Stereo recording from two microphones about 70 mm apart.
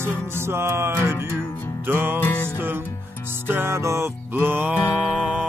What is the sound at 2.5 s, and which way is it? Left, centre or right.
Music, right.